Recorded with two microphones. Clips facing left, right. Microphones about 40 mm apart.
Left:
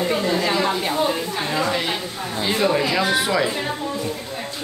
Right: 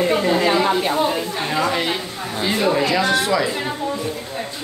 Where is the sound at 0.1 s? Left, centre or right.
Centre.